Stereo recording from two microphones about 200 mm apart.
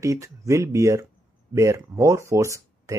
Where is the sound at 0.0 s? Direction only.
15° right (ahead or behind).